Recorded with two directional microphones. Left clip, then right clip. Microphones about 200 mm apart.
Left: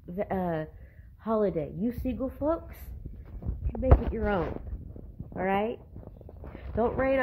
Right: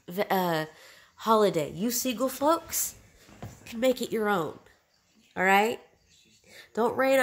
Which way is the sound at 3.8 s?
20° right (ahead or behind).